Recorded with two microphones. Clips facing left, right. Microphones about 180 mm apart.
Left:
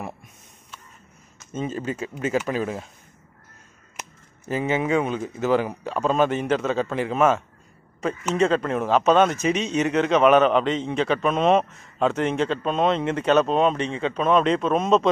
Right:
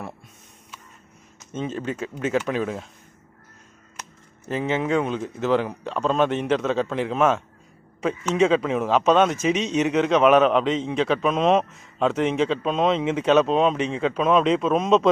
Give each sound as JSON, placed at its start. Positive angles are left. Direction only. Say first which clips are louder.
{"t": 1.5, "sound": "speech", "louder": "even", "side_deg": 5}
{"t": 4.5, "sound": "speech", "louder": "left 1 dB", "side_deg": 5}